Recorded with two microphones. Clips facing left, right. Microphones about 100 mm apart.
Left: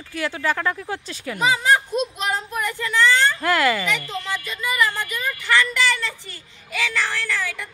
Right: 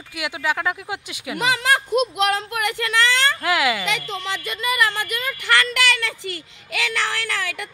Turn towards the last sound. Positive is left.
turn(degrees=-75)  # may be behind; listen again after turning